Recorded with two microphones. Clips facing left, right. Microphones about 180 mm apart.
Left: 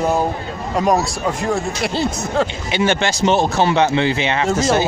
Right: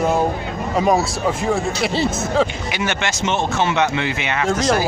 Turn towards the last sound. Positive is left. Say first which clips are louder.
# left 1 dB
turn(degrees=5)  # may be behind; listen again after turning